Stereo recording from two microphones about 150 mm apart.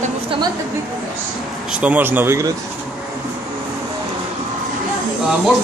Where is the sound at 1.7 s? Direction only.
10° right (ahead or behind).